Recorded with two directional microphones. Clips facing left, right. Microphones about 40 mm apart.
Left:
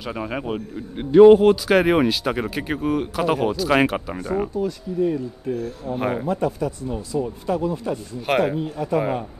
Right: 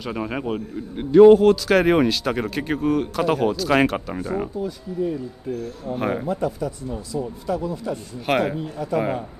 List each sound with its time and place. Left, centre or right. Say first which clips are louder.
0.0 s a man's voice: right 1 dB; centre
0.9 s speech: even; centre
5.9 s a man's voice: even; centre
6.2 s speech: left 2 dB; left
8.3 s a man's voice: left 1 dB; centre
8.5 s speech: left 2 dB; left